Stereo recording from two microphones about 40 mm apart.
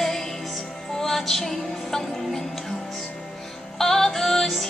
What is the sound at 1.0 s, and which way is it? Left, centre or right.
Music, centre.